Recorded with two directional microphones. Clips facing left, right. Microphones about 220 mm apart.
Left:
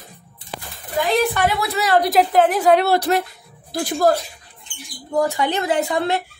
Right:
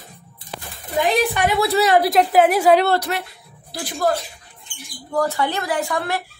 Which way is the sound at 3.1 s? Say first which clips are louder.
Left 7 dB; 40° left (ahead or behind).